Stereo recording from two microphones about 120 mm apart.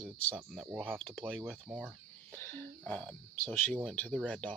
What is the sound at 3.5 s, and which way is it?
Speech, 15° left (ahead or behind).